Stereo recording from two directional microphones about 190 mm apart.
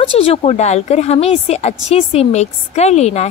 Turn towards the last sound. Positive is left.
turn(degrees=35)  # may be behind; listen again after turning